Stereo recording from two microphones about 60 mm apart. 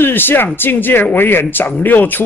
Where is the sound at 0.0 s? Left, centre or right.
Left.